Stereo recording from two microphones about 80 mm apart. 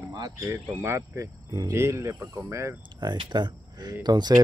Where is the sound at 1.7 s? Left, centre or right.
Right.